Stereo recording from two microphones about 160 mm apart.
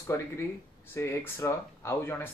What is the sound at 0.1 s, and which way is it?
A man's voice, 15° left (ahead or behind).